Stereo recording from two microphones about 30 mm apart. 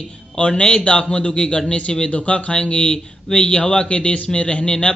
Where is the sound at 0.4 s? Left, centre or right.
Left.